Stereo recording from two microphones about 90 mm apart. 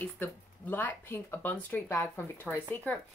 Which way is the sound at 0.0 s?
20° left (ahead or behind).